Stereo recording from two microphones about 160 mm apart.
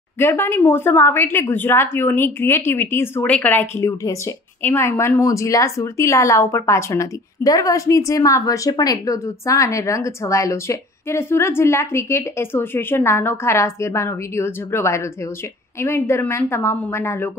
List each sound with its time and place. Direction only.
0.2 s a woman's voice: 15° left (ahead or behind)